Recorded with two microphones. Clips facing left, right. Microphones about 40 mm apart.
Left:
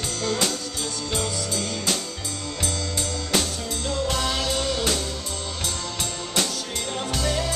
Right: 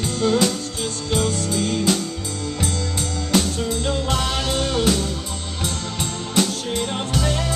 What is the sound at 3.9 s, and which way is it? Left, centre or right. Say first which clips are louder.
Music: left 1 dB; right.